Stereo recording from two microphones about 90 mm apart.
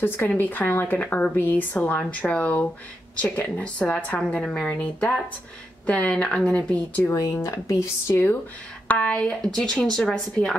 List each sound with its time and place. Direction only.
0.0 s a woman's voice: 25° left (ahead or behind)
7.0 s speech: 35° left (ahead or behind)
8.8 s a woman's voice: 15° left (ahead or behind)